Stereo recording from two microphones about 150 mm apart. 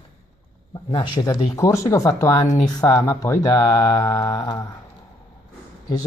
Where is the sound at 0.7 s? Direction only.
25° left (ahead or behind).